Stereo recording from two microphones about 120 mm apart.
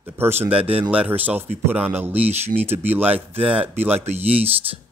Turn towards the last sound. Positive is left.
turn(degrees=-55)  # may be behind; listen again after turning